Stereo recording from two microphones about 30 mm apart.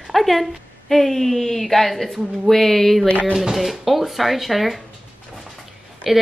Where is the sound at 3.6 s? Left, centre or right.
Centre.